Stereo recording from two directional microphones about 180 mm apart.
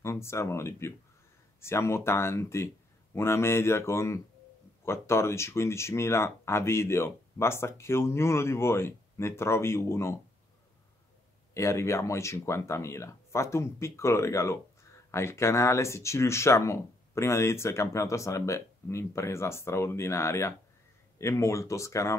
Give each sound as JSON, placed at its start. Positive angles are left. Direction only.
{"t": 0.0, "sound": "speech", "side_deg": 15}
{"t": 11.5, "sound": "speech", "side_deg": 15}